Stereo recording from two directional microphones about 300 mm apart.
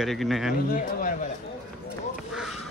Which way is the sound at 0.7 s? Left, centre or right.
Left.